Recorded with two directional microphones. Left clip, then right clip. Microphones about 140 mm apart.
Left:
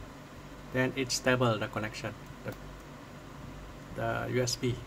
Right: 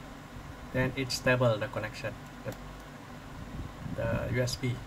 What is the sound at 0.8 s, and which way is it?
Speech, 35° left (ahead or behind).